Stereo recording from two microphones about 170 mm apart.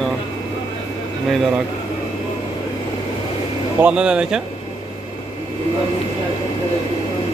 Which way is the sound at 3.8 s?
5° right (ahead or behind).